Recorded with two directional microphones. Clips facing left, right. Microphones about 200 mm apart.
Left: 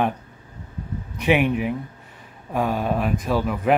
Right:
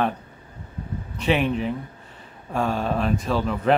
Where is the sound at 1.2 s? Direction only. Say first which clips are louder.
Left 2 dB; 15° left (ahead or behind).